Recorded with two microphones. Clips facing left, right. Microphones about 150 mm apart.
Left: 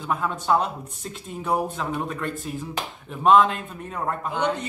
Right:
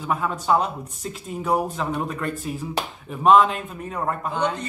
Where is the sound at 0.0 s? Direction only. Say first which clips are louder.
Right 1 dB; centre (ahead or behind).